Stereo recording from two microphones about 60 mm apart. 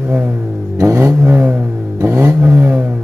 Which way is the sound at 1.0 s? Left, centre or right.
Right.